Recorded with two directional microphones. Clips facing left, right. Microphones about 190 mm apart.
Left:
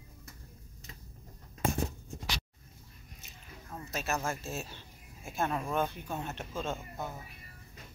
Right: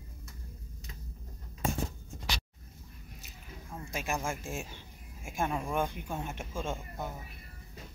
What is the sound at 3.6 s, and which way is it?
Speech, 10° right (ahead or behind).